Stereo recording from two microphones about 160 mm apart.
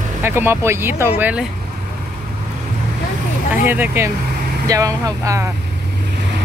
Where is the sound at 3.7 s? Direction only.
15° right (ahead or behind).